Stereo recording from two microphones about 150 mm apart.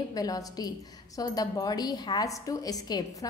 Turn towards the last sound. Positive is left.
turn(degrees=25)  # may be behind; listen again after turning